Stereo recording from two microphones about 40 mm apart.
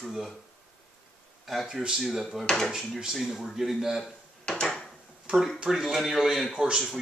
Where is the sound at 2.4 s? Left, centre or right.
Centre.